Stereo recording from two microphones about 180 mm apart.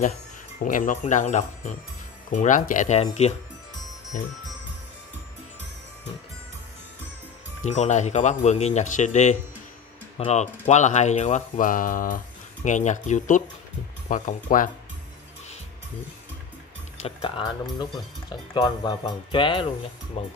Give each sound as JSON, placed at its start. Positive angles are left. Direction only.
{"t": 0.6, "sound": "speech", "side_deg": 45}
{"t": 4.1, "sound": "speech", "side_deg": 50}
{"t": 7.6, "sound": "speech", "side_deg": 40}
{"t": 16.9, "sound": "music", "side_deg": 35}
{"t": 17.4, "sound": "speech", "side_deg": 25}